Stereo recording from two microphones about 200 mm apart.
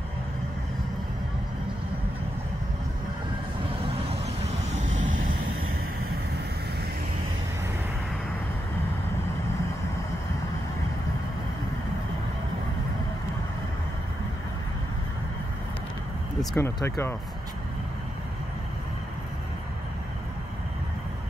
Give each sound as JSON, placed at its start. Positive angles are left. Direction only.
{"t": 4.8, "sound": "vehicle", "side_deg": -75}
{"t": 16.5, "sound": "speech", "side_deg": 15}